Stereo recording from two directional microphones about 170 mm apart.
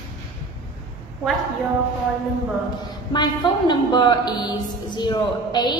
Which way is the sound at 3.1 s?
25° left (ahead or behind).